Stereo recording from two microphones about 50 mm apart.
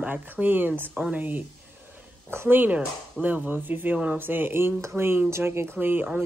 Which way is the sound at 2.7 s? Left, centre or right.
Right.